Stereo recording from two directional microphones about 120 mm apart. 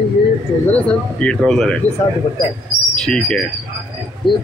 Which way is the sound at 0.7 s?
10° left (ahead or behind).